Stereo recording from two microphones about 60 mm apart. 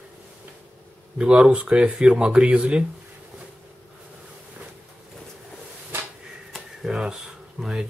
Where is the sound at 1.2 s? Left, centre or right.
Centre.